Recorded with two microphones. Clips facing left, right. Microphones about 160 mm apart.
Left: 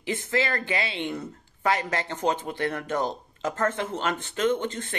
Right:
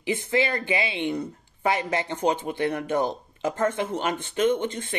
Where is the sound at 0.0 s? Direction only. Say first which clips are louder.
Right 3 dB; 15° right (ahead or behind).